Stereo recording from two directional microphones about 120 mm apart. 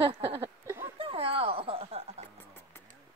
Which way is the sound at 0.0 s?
50° right (ahead or behind).